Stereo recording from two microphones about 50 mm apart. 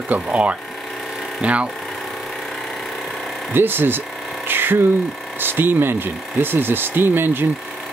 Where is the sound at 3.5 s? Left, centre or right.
Right.